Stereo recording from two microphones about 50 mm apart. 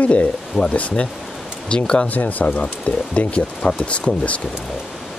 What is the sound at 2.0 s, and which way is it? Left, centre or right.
Speech, left.